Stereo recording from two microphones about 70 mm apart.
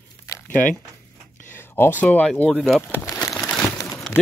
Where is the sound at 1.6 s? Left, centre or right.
Left.